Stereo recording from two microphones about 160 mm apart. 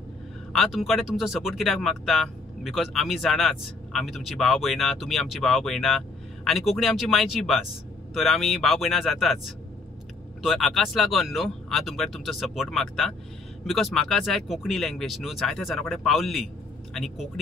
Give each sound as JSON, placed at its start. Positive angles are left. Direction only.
{"t": 0.5, "sound": "speech", "side_deg": 0}
{"t": 10.4, "sound": "speech", "side_deg": 0}